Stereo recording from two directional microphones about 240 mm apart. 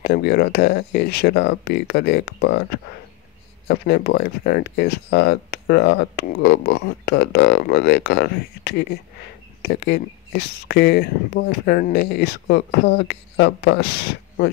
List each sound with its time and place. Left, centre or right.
0.0 s speech: left
3.6 s speech: left